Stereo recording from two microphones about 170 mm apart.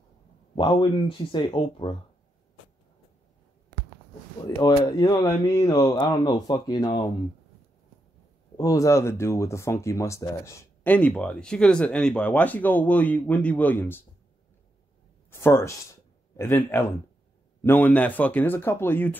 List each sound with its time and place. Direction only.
0.6 s speech: 30° left (ahead or behind)
4.6 s speech: 25° left (ahead or behind)
8.5 s speech: 20° left (ahead or behind)
15.3 s a man's voice: 15° left (ahead or behind)